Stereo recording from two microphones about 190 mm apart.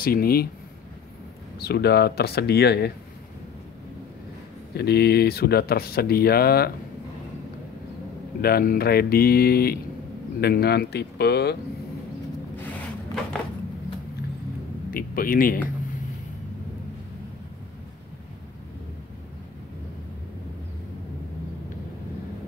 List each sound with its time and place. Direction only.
0.0 s speech: 50° left (ahead or behind)
1.6 s speech: 55° left (ahead or behind)
4.7 s speech: 55° left (ahead or behind)
8.4 s speech: 55° left (ahead or behind)
12.6 s a sound: 5° left (ahead or behind)
14.9 s a man's voice: 50° left (ahead or behind)